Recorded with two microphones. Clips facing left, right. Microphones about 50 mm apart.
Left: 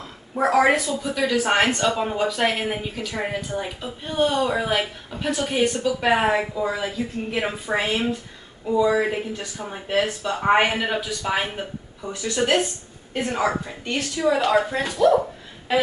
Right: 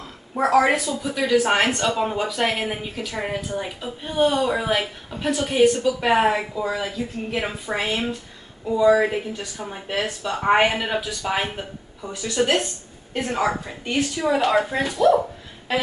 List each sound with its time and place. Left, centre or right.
0.4 s speech: centre
13.9 s a woman's voice: centre
15.7 s a sound: centre